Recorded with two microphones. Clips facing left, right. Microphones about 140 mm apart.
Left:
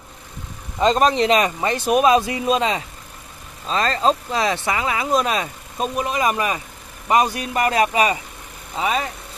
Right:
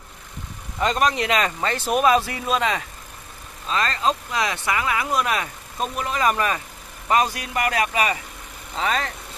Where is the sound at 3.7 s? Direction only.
30° left (ahead or behind).